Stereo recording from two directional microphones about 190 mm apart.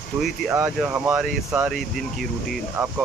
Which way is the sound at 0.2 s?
5° right (ahead or behind).